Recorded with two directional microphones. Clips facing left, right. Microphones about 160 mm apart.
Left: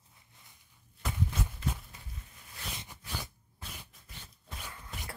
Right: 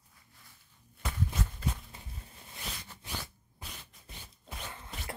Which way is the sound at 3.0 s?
20° right (ahead or behind).